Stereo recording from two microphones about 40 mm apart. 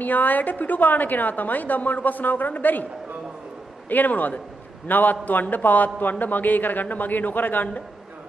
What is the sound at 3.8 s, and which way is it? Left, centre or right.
A man's voice, left.